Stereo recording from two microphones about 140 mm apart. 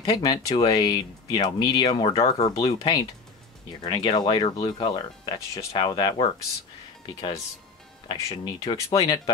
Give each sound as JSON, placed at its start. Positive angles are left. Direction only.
{"t": 0.0, "sound": "speech", "side_deg": 25}
{"t": 2.0, "sound": "speech", "side_deg": 45}
{"t": 2.4, "sound": "speech", "side_deg": 30}